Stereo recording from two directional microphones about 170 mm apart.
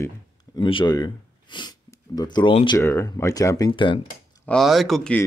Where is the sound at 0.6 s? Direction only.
30° left (ahead or behind).